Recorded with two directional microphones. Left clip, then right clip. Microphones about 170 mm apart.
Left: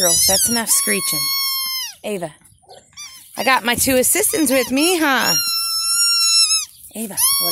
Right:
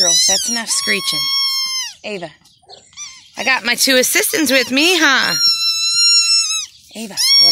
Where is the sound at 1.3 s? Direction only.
55° left (ahead or behind).